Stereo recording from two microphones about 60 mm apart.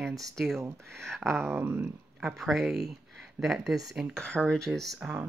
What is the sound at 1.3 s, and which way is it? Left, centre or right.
Speech, centre.